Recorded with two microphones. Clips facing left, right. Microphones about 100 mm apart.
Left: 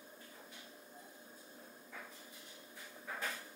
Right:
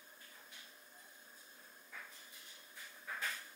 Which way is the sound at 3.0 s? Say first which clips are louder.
Left 1 dB; 20° left (ahead or behind).